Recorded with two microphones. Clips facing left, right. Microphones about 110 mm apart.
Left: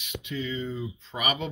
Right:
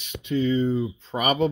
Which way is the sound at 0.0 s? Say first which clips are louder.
Right 9 dB; 35° right (ahead or behind).